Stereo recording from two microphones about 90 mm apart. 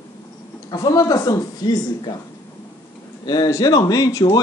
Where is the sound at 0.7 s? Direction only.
45° left (ahead or behind).